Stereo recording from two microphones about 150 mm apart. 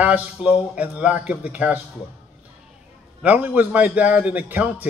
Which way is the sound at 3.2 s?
10° right (ahead or behind).